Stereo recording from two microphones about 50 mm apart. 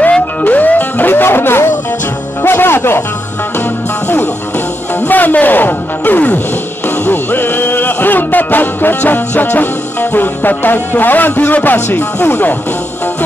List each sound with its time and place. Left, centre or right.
0.4 s music: left
5.0 s music: left
10.1 s speech: left